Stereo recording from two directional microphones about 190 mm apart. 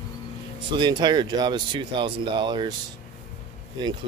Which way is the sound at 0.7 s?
25° right (ahead or behind).